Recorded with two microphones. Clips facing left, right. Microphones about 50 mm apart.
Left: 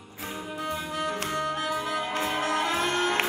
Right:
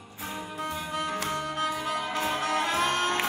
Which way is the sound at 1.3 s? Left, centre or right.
Left.